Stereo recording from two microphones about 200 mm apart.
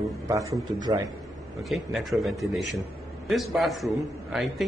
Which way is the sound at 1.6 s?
Centre (ahead or behind).